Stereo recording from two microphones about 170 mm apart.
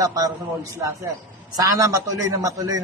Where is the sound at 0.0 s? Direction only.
20° right (ahead or behind).